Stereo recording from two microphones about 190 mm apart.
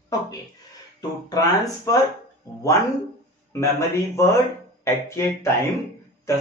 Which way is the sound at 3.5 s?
15° left (ahead or behind).